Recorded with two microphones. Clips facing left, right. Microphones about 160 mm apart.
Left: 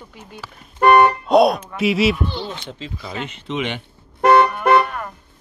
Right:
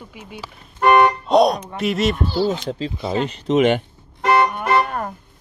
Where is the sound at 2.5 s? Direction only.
40° right (ahead or behind).